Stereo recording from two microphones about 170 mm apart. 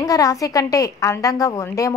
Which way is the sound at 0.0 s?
20° left (ahead or behind).